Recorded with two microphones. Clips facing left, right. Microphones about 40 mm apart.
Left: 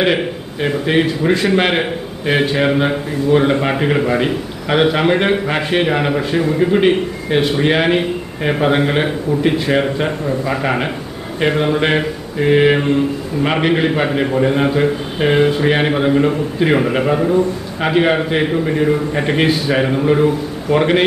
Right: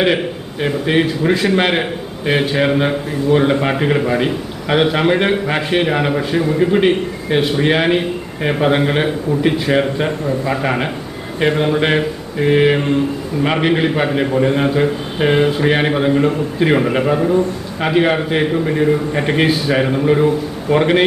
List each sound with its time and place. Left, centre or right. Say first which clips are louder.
0.0 s a man's voice: even; centre